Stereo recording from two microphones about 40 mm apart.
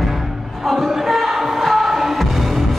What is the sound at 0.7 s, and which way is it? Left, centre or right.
Music, centre.